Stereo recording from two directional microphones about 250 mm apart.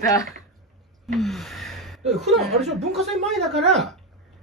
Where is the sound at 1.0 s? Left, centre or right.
Centre.